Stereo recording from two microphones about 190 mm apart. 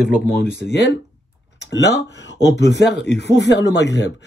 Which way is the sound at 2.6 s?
65° left (ahead or behind).